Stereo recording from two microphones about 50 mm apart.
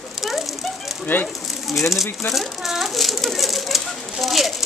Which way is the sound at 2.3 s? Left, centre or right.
Centre.